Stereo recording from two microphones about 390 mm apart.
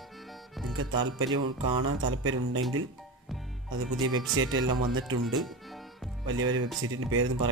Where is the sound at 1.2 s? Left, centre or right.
Centre.